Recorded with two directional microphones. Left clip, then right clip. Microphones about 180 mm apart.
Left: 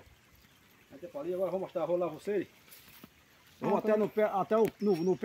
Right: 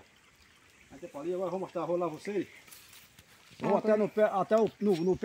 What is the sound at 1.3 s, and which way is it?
Speech, 55° right (ahead or behind).